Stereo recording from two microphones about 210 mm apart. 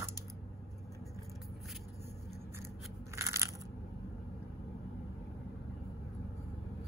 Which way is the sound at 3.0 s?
15° right (ahead or behind).